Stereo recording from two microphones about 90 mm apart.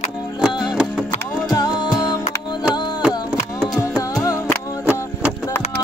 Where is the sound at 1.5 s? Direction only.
50° left (ahead or behind).